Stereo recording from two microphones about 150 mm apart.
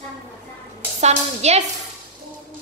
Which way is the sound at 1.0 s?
45° right (ahead or behind).